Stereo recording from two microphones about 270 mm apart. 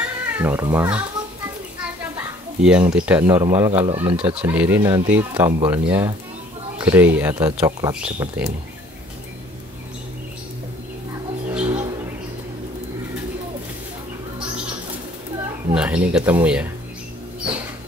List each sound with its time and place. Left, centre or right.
0.3 s speech: centre
1.8 s children playing: centre
2.9 s speech: centre
4.4 s speech: centre
11.5 s a sound: centre
15.7 s speech: centre